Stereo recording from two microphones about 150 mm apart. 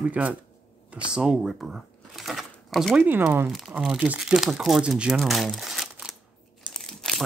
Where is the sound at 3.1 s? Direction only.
15° right (ahead or behind).